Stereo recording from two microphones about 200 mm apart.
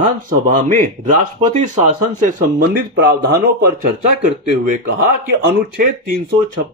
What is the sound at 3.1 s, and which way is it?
Speech, 50° right (ahead or behind).